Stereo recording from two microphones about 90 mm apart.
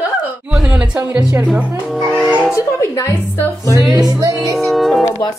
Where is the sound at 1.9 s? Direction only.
Centre (ahead or behind).